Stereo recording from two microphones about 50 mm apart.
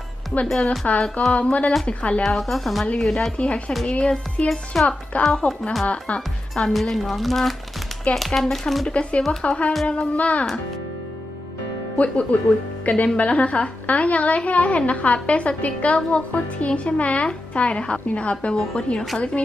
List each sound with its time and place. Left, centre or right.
0.7 s a child's voice: left
2.2 s speech: centre
3.3 s a child's voice: left
4.7 s speech: centre
5.1 s a child's voice: left
5.5 s speech: centre
5.9 s a child's voice: left
6.7 s speech: centre
8.1 s speech: left
8.4 s speech: centre
8.8 s a child's voice: left
12.0 s a child's voice: left